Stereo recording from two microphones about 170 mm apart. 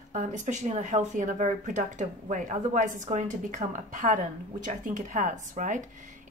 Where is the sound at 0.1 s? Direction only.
45° right (ahead or behind).